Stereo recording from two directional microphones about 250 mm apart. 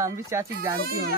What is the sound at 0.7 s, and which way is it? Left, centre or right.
Speech, right.